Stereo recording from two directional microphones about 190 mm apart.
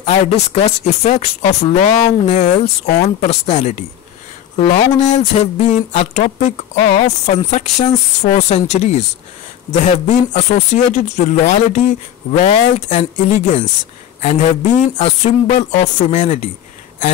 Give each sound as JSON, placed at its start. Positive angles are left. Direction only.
{"t": 0.0, "sound": "speech", "side_deg": 35}
{"t": 5.3, "sound": "speech", "side_deg": 35}